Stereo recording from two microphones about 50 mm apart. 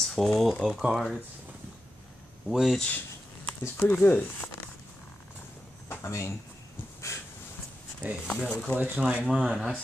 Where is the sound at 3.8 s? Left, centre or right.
Left.